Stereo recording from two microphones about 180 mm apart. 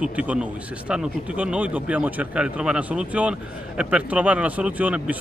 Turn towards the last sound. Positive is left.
turn(degrees=-10)  # may be behind; listen again after turning